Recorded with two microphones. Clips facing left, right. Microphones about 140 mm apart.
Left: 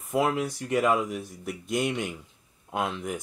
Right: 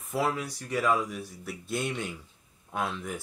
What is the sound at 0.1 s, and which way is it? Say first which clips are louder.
Speech: left 4 dB; 15° left (ahead or behind).